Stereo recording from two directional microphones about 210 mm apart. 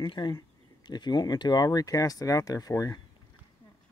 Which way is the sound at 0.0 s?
20° left (ahead or behind).